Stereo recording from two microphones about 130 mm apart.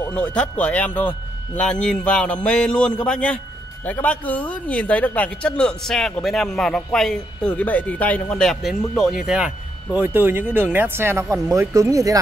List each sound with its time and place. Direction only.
0.1 s speech: 10° left (ahead or behind); by 12.2 s 25° right (ahead or behind)